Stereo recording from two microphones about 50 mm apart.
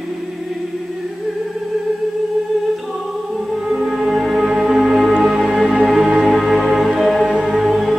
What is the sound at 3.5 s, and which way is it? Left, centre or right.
Music, centre.